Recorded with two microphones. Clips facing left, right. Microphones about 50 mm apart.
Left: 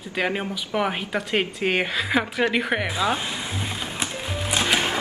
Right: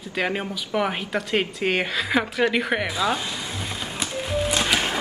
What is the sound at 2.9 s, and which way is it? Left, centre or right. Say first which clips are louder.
Speech: even; centre.